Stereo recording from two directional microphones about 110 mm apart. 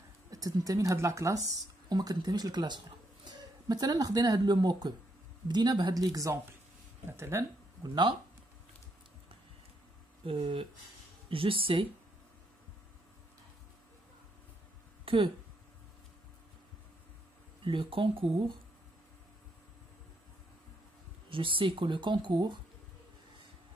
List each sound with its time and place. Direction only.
0.3 s speech: 30° right (ahead or behind)
7.1 s speech: 20° right (ahead or behind)
7.8 s speech: 40° right (ahead or behind)
10.2 s speech: 55° right (ahead or behind)
15.0 s speech: 55° right (ahead or behind)
17.6 s speech: 50° right (ahead or behind)
21.3 s speech: 50° right (ahead or behind)